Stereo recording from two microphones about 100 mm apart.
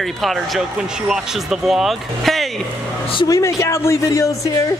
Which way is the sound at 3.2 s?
30° left (ahead or behind).